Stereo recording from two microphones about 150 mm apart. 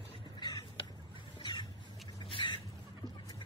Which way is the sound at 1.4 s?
30° left (ahead or behind).